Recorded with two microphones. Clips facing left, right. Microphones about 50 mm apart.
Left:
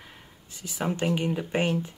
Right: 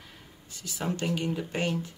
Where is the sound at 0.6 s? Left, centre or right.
Left.